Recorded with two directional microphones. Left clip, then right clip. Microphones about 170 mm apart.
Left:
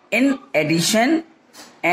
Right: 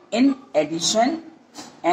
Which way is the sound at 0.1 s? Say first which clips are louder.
Left 2 dB; 20° left (ahead or behind).